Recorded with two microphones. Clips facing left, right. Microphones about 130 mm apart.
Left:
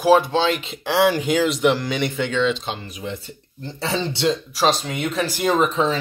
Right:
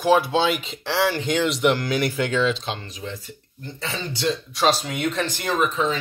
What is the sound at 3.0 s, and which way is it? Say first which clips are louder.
Speech: left 4 dB; 25° left (ahead or behind).